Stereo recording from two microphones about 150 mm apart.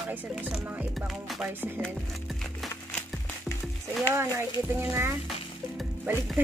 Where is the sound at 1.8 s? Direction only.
Centre (ahead or behind).